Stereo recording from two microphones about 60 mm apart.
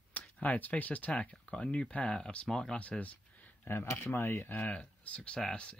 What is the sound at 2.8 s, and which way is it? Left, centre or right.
Speech, left.